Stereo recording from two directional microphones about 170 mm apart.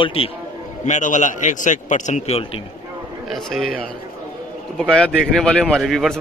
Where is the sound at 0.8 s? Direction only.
45° left (ahead or behind).